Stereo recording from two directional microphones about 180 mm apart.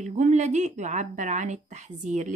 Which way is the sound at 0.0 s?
40° right (ahead or behind).